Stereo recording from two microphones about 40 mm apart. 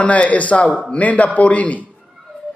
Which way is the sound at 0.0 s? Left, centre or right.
Left.